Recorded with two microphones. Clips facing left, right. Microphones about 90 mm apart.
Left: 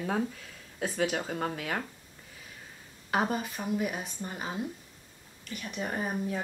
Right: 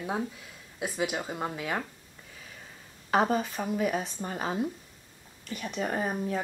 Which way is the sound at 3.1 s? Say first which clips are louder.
Right 4 dB; 40° right (ahead or behind).